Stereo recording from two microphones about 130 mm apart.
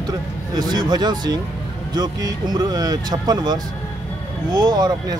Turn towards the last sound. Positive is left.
turn(degrees=-30)  # may be behind; listen again after turning